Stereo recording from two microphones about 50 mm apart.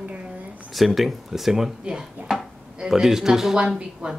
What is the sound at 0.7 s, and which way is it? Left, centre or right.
A woman's voice, centre.